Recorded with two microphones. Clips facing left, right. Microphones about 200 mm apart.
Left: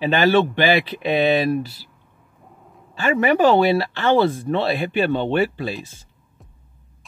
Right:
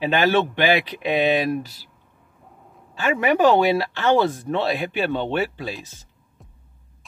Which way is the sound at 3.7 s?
10° right (ahead or behind).